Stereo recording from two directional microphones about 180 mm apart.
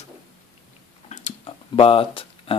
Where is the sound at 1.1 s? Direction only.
35° left (ahead or behind).